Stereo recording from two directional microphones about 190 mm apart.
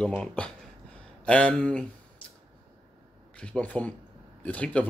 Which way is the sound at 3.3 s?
5° left (ahead or behind).